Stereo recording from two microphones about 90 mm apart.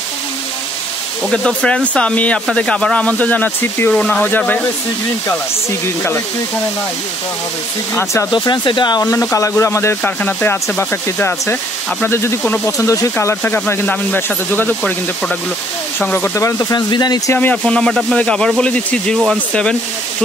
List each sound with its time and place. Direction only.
1.3 s speech: 10° left (ahead or behind); by 6.2 s 25° left (ahead or behind)
7.9 s speech: 30° left (ahead or behind)
8.3 s speech: 60° left (ahead or behind)
9.1 s speech: 35° left (ahead or behind)
13.2 s speech: 25° left (ahead or behind)
14.8 s speech: 10° left (ahead or behind)
16.3 s speech: 35° left (ahead or behind)
16.7 s speech: 50° left (ahead or behind)
17.3 s speech: 20° left (ahead or behind)